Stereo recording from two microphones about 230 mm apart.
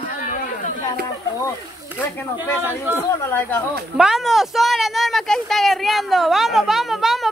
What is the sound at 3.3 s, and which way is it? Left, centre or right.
Speech, centre.